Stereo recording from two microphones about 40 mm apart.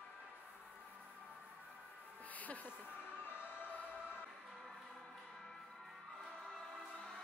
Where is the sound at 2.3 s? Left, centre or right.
Left.